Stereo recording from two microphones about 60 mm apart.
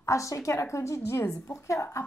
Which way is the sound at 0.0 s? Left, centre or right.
Left.